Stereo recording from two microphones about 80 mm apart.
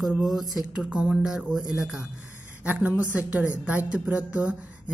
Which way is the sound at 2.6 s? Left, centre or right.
Right.